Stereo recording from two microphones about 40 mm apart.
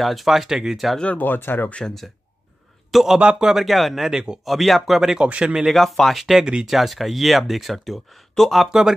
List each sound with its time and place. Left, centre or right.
0.0 s speech: centre
1.2 s speech: left
2.9 s a man's voice: centre
3.2 s a man's voice: right
3.6 s speech: centre
4.1 s a man's voice: centre
4.5 s speech: centre
5.2 s a man's voice: right
5.7 s speech: centre
6.1 s speech: centre